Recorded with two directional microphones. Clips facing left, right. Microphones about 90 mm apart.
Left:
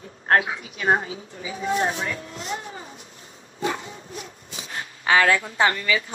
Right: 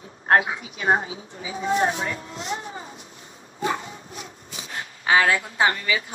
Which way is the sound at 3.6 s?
25° right (ahead or behind).